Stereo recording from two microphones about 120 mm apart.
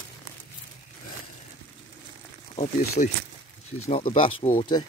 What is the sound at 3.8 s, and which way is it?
Speech, 60° left (ahead or behind).